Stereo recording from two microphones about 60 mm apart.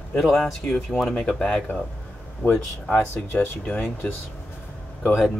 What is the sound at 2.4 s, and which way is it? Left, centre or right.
Speech, left.